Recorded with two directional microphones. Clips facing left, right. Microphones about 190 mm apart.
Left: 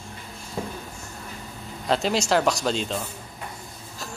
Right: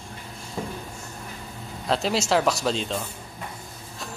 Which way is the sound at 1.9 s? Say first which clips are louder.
Left 1 dB; centre (ahead or behind).